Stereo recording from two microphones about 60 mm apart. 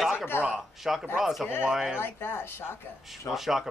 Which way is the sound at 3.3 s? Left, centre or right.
Centre.